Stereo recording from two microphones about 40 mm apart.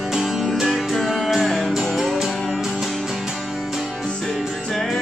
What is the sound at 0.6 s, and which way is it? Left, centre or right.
Music, centre.